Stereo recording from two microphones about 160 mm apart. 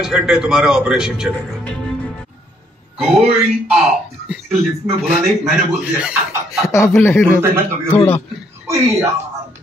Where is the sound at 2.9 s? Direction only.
Centre (ahead or behind).